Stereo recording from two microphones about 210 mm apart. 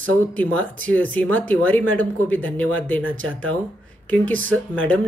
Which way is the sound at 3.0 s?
70° right (ahead or behind).